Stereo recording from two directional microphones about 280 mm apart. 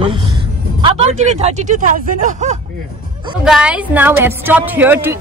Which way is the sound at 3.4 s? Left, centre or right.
Centre.